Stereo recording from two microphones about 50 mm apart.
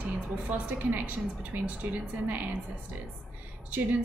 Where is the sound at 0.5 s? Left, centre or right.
Right.